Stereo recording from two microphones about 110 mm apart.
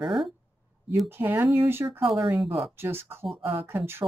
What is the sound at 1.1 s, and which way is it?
Speech, 20° right (ahead or behind).